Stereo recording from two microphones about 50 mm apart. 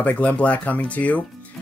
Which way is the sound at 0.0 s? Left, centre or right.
Left.